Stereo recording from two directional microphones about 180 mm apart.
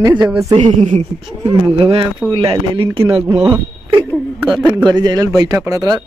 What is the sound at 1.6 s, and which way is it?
Speech, 30° right (ahead or behind).